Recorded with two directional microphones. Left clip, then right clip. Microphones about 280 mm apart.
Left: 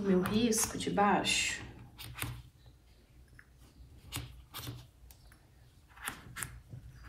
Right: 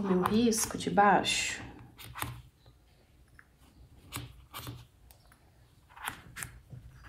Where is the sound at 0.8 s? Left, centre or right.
Right.